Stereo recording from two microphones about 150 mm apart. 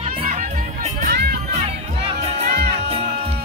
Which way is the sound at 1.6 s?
40° right (ahead or behind).